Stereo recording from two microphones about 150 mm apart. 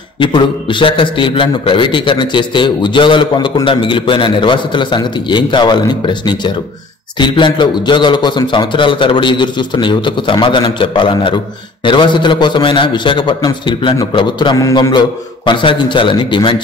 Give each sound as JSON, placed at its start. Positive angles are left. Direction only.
{"t": 0.2, "sound": "speech", "side_deg": 35}